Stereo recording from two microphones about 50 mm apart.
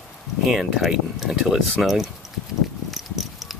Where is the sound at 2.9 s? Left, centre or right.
Centre.